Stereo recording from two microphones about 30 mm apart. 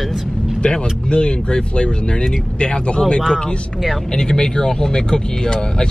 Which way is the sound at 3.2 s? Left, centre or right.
Centre.